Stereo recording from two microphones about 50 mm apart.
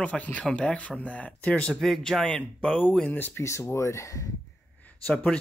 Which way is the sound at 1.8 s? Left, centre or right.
Centre.